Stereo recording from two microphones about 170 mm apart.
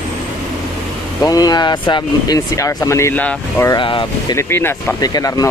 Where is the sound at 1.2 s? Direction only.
20° left (ahead or behind).